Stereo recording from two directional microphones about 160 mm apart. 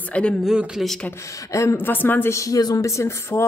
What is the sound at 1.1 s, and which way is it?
A woman's voice, 20° left (ahead or behind).